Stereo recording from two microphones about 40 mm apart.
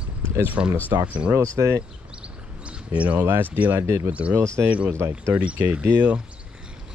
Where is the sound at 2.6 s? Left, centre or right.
Right.